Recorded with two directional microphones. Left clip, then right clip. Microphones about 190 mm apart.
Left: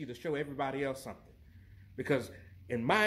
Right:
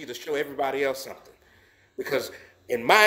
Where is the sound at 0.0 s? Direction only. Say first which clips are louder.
Right 7 dB; 5° right (ahead or behind).